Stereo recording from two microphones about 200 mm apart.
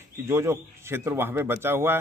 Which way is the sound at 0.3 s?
15° right (ahead or behind).